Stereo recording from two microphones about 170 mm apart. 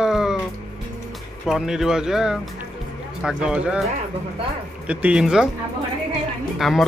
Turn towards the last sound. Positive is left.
turn(degrees=0)  # may be behind; listen again after turning